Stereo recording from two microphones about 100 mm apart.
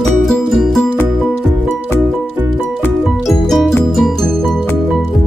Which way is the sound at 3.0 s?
Centre (ahead or behind).